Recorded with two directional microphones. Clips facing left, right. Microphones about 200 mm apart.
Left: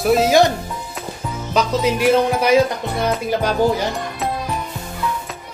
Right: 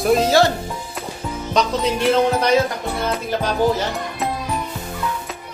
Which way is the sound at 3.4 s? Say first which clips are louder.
Even; 10° left (ahead or behind).